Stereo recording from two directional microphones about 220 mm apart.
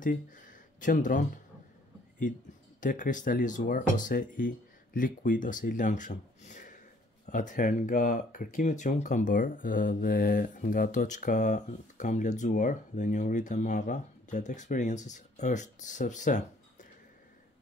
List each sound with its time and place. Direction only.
0.0 s speech: 35° left (ahead or behind)
2.8 s speech: 35° left (ahead or behind)